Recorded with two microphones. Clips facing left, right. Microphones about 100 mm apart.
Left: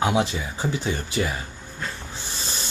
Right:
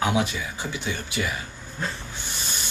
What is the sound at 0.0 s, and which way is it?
Speech, 25° left (ahead or behind).